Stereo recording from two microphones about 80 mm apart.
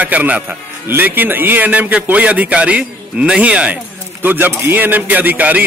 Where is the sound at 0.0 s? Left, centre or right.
Centre.